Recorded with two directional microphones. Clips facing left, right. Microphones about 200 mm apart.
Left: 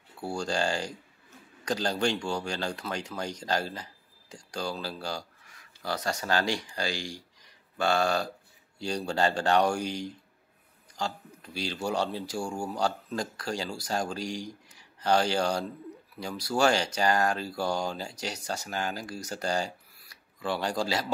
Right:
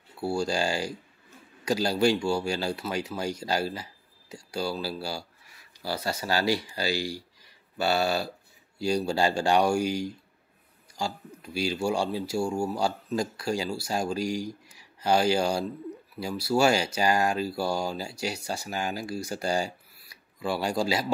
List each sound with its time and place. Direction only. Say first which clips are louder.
0.2 s speech: right 3 dB; 10° right (ahead or behind)